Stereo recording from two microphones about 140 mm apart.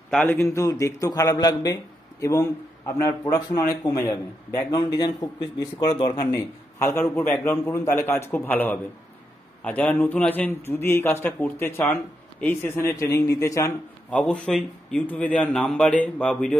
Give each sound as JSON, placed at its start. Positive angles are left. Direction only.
{"t": 0.3, "sound": "a man's voice", "side_deg": 20}
{"t": 6.3, "sound": "a man's voice", "side_deg": 20}
{"t": 14.1, "sound": "a man's voice", "side_deg": 10}